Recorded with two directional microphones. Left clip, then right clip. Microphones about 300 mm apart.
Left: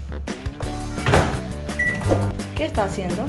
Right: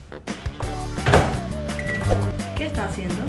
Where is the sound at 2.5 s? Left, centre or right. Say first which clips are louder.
Left 7 dB; centre.